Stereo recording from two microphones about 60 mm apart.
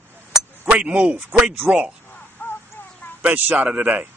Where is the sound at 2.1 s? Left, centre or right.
Left.